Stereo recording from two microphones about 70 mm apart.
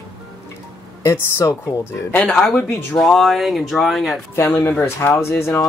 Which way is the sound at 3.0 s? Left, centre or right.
Centre.